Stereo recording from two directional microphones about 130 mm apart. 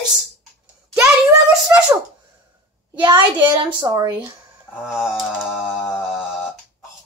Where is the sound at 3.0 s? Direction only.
35° right (ahead or behind).